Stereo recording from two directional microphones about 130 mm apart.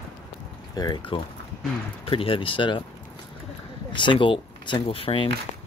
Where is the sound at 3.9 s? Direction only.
40° left (ahead or behind).